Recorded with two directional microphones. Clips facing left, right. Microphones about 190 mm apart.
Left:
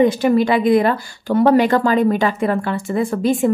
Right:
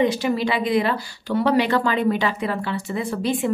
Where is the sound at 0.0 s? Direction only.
50° left (ahead or behind).